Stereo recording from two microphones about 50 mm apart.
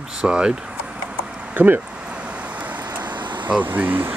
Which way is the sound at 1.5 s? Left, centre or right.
Right.